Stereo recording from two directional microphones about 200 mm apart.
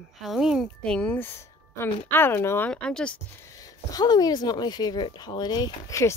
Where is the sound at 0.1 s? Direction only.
Centre (ahead or behind).